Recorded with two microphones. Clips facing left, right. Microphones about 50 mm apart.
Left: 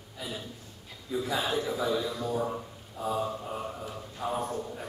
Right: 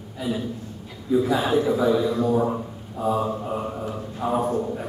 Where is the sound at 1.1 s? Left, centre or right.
Centre; by 2.6 s right.